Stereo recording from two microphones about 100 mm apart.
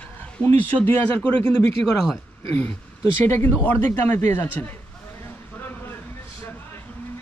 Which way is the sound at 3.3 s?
25° left (ahead or behind).